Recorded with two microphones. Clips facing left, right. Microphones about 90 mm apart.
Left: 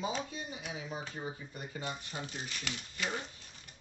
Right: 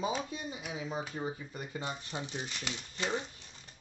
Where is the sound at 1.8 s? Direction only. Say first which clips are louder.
Even; 25° right (ahead or behind).